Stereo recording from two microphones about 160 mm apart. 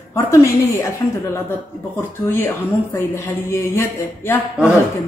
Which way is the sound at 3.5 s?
15° left (ahead or behind).